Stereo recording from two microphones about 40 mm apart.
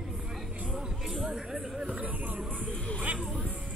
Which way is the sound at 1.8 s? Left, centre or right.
Right.